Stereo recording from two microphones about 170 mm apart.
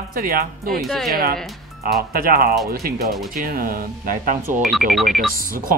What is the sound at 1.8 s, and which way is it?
Speech, 60° right (ahead or behind).